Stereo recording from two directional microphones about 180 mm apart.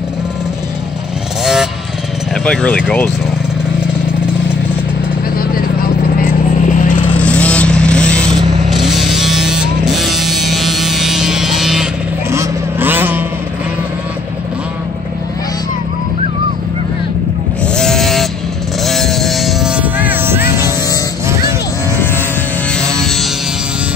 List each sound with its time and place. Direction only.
1.4 s motorcycle: centre (ahead or behind)
2.4 s speech: 5° left (ahead or behind)
5.4 s vehicle: 55° left (ahead or behind)
7.2 s vehicle: 5° left (ahead or behind)
12.3 s vehicle: 15° right (ahead or behind)
17.7 s vehicle: 5° left (ahead or behind); by 20.7 s 15° right (ahead or behind)
22.8 s music: 5° left (ahead or behind)